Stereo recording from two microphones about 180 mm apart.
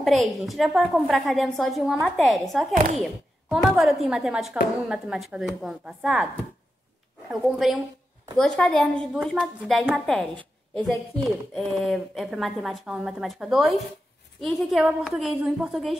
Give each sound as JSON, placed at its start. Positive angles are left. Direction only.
{"t": 0.0, "sound": "a woman's voice", "side_deg": 0}
{"t": 2.7, "sound": "speech", "side_deg": -45}
{"t": 3.0, "sound": "a woman's voice", "side_deg": 0}